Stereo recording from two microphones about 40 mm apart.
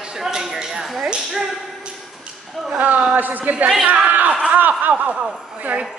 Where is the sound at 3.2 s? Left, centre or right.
Right.